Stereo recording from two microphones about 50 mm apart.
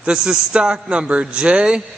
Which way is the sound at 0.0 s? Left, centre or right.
Centre.